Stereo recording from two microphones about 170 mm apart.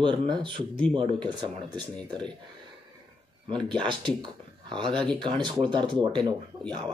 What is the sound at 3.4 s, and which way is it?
Speech, 30° right (ahead or behind).